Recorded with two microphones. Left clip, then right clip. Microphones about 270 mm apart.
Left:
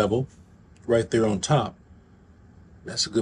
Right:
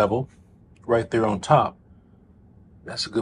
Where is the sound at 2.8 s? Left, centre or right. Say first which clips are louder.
Left 1 dB; centre.